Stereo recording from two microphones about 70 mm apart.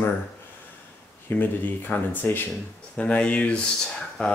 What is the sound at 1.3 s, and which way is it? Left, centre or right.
Speech, left.